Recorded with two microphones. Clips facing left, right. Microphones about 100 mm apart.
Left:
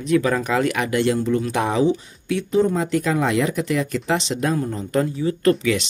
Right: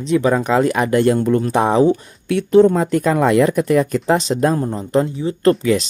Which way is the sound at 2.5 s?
65° right (ahead or behind).